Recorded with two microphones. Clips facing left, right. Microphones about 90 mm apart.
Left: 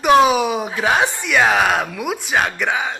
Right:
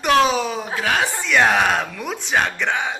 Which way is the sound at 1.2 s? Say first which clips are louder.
Left 1 dB; 5° left (ahead or behind).